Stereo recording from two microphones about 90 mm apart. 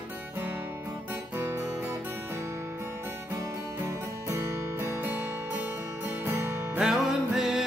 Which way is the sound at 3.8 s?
30° right (ahead or behind).